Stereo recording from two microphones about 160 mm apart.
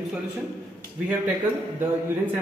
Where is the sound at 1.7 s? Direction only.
15° right (ahead or behind).